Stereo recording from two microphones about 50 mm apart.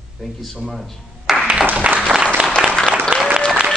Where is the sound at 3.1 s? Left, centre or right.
Centre.